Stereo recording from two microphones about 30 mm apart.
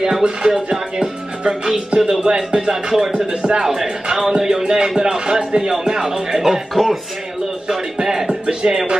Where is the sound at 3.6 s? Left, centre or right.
Centre.